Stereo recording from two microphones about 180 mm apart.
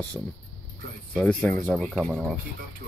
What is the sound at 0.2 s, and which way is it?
Speech, centre (ahead or behind).